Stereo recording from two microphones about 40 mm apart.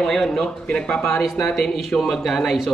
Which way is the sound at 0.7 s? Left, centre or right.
Left.